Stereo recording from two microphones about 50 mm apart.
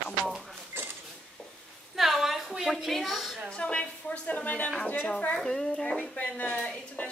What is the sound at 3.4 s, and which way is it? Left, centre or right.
A woman's voice, left.